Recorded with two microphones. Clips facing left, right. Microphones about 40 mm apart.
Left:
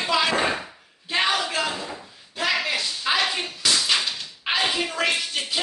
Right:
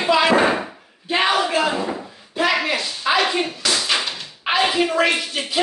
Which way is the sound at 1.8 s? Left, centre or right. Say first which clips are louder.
Right 9 dB; right.